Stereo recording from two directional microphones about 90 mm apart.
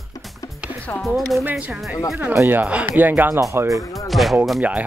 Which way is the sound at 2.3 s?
30° right (ahead or behind).